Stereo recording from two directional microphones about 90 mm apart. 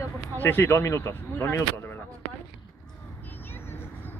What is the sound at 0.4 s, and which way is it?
Speech, 20° left (ahead or behind).